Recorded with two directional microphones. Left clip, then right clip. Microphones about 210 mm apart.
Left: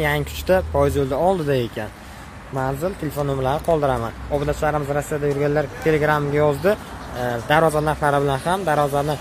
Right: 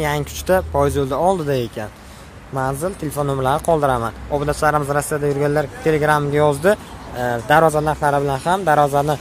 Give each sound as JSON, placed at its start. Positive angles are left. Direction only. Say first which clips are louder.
{"t": 0.0, "sound": "speech", "louder": "even", "side_deg": -10}